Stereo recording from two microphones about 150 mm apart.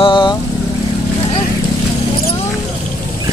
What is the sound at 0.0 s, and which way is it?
Vehicle, 30° left (ahead or behind).